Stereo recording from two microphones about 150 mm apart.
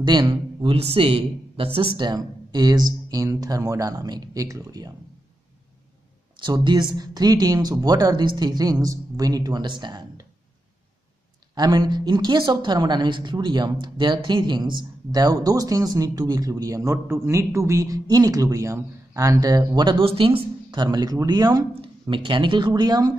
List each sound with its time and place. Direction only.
0.0 s a woman's voice: 30° right (ahead or behind)
6.4 s a woman's voice: 30° right (ahead or behind)
11.5 s a woman's voice: 25° right (ahead or behind)